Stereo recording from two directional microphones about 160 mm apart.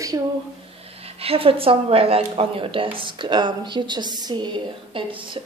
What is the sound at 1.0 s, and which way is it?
A woman's voice, 35° right (ahead or behind).